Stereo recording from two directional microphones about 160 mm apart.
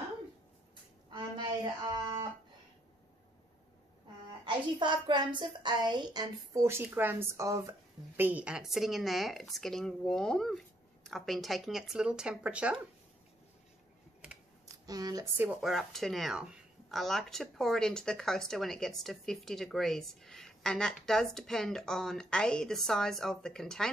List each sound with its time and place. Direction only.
1.1 s a sound: 30° right (ahead or behind)
4.7 s a woman's voice: 30° right (ahead or behind)
8.2 s speech: 10° right (ahead or behind)
14.9 s a woman's voice: 25° right (ahead or behind)
15.3 s speech: 10° right (ahead or behind)